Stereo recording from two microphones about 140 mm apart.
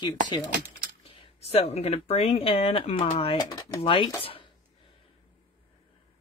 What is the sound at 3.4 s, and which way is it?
Speech, 25° left (ahead or behind).